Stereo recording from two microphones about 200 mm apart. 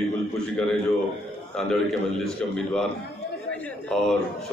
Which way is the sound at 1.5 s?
5° left (ahead or behind).